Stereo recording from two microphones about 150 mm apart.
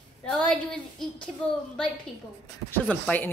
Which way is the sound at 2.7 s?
10° left (ahead or behind).